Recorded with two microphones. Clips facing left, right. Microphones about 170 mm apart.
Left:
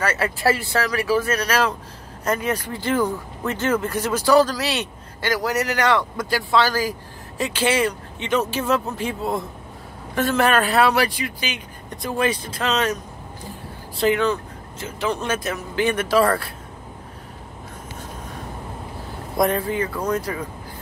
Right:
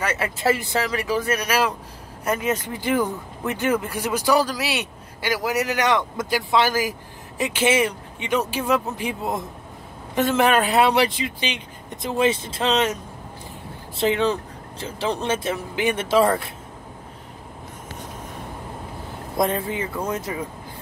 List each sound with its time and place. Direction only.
0.0 s speech: 15° right (ahead or behind)
13.9 s speech: 25° right (ahead or behind)
15.7 s speech: 15° right (ahead or behind)
19.3 s speech: 25° right (ahead or behind)